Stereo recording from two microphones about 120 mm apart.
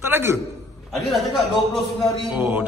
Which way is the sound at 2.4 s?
15° right (ahead or behind).